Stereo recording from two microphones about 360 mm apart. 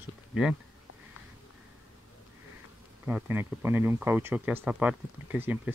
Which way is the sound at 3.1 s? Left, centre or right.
Centre.